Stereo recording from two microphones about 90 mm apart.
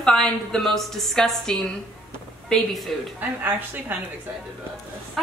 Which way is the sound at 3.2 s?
20° right (ahead or behind).